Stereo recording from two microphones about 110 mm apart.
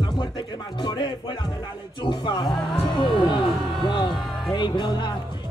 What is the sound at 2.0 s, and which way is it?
Music, 45° left (ahead or behind).